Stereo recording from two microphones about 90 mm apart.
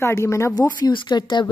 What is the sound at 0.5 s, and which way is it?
Speech, 50° left (ahead or behind).